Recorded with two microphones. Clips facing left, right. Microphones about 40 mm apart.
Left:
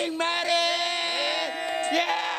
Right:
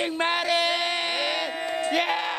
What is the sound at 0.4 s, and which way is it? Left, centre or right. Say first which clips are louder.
Music: right 1 dB; centre.